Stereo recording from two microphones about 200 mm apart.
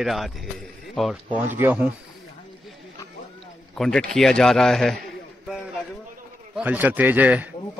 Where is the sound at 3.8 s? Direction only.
Centre (ahead or behind).